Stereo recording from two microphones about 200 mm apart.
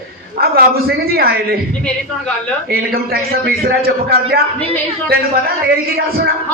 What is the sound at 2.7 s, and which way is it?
A man's voice, 50° right (ahead or behind).